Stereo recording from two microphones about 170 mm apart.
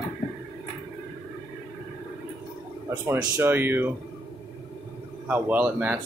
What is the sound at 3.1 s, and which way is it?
Speech, 15° right (ahead or behind).